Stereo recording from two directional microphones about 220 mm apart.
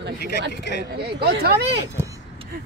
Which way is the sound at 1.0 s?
45° right (ahead or behind).